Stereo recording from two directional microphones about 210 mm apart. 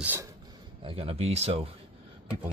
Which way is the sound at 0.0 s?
10° right (ahead or behind).